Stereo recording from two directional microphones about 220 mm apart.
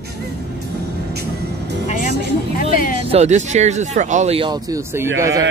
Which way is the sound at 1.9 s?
35° left (ahead or behind).